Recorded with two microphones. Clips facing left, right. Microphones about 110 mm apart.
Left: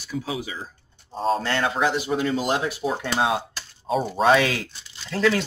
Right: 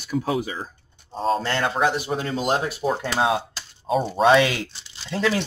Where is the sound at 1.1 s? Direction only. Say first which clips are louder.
Right 1 dB; centre (ahead or behind).